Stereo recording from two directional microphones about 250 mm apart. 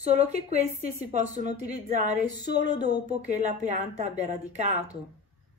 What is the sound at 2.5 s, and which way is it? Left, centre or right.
Speech, centre.